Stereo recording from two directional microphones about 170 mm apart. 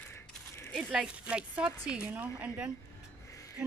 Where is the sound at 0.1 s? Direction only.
15° left (ahead or behind).